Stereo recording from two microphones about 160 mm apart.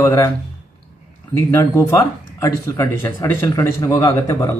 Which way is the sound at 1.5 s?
15° left (ahead or behind).